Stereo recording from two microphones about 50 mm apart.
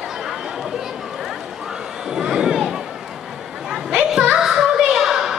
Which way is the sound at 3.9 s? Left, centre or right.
Centre.